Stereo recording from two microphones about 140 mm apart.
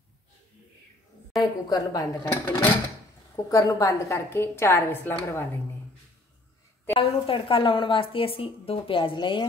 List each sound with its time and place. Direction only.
1.4 s a woman's voice: 25° left (ahead or behind)
6.9 s a woman's voice: 40° left (ahead or behind)